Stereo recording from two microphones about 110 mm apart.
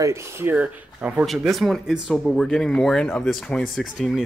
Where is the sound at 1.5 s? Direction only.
Centre (ahead or behind).